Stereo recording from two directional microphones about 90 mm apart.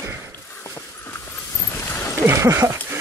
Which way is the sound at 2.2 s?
30° right (ahead or behind).